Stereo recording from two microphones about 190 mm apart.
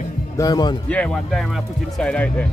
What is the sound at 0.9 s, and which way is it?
Speech, 5° left (ahead or behind).